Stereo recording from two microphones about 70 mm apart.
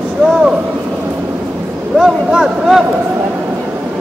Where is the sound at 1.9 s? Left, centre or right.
Centre.